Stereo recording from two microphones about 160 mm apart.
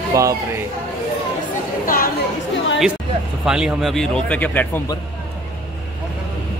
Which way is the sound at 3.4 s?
5° right (ahead or behind).